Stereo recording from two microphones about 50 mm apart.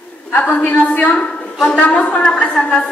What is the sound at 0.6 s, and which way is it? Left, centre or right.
A woman's voice, left.